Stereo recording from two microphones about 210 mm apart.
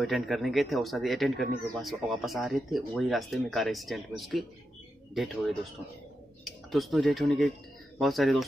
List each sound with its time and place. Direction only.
0.0 s speech: centre (ahead or behind)